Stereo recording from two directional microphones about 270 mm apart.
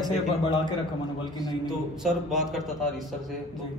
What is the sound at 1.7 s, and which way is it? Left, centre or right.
A man's voice, centre.